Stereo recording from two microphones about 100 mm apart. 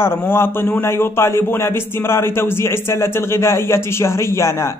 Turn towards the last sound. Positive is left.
turn(degrees=30)  # may be behind; listen again after turning